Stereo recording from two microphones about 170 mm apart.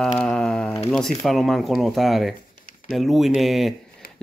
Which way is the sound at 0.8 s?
Centre (ahead or behind).